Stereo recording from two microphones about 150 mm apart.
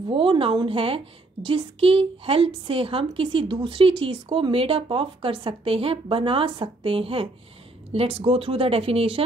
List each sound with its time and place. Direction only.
0.1 s a woman's voice: 35° right (ahead or behind)